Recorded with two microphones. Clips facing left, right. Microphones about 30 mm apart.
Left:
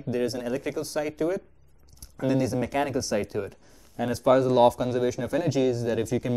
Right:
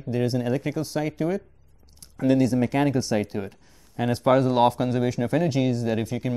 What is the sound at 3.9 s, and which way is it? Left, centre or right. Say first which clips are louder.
Speech: right 1 dB; right.